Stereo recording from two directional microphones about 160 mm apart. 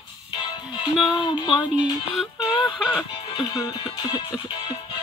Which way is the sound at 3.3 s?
25° left (ahead or behind).